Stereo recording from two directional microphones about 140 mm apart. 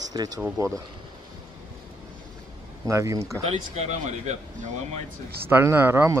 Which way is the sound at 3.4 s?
50° right (ahead or behind).